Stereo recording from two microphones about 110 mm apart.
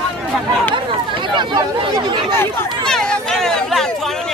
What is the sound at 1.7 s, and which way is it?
Speech, 45° right (ahead or behind).